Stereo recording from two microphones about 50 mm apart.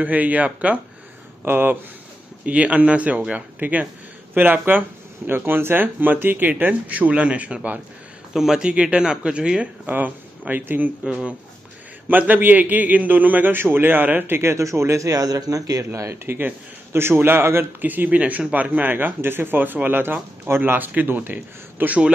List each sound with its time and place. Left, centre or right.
0.0 s speech: right
1.4 s speech: right
2.4 s speech: right
6.7 s speech: right
8.3 s speech: centre
9.8 s speech: right
12.1 s speech: right
14.5 s speech: right
16.3 s speech: right
17.7 s speech: right